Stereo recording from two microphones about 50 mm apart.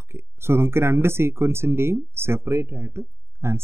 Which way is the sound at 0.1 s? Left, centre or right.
Right.